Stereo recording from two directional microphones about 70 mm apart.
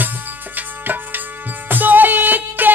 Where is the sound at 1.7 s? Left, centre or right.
Right.